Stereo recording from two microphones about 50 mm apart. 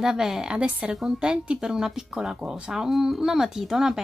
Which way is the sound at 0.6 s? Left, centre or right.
Right.